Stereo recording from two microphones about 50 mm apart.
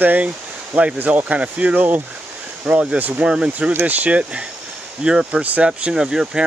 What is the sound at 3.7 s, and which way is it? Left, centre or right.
Speech, right.